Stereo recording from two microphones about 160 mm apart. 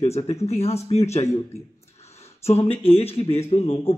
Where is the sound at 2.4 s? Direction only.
40° left (ahead or behind).